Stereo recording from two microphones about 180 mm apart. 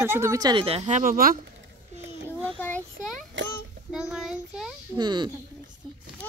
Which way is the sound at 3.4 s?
90° right.